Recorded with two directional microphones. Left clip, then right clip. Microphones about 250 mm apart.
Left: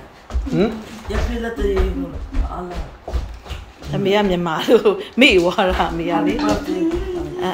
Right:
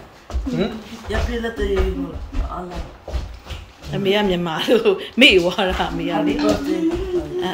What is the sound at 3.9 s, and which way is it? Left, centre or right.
A man's voice, centre.